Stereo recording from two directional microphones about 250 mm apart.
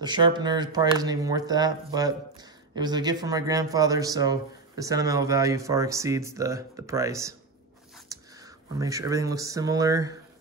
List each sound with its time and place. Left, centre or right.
0.0 s speech: centre
8.7 s speech: centre